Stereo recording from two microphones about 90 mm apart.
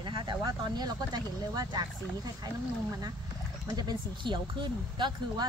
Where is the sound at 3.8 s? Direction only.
50° right (ahead or behind).